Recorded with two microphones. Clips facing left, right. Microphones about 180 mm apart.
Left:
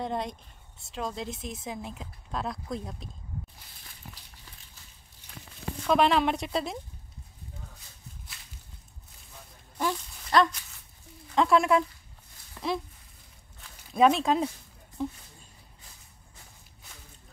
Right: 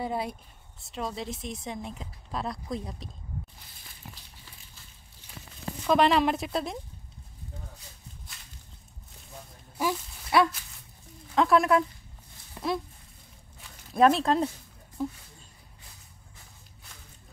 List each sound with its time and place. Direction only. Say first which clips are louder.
0.0 s speech: right 1 dB; 5° right (ahead or behind)
5.9 s speech: right 1 dB; centre (ahead or behind)
9.8 s a sound: right 1 dB; 10° right (ahead or behind)
11.3 s speech: even; centre (ahead or behind)
12.6 s a sound: right 1 dB; 20° right (ahead or behind)
13.9 s speech: right 1 dB; centre (ahead or behind)